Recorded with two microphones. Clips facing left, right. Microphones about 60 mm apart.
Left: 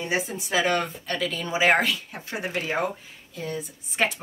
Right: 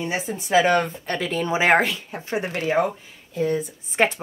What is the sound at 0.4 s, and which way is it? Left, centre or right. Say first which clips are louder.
Speech: right 8 dB; right.